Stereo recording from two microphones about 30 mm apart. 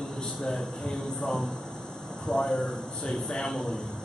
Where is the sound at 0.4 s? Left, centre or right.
Centre.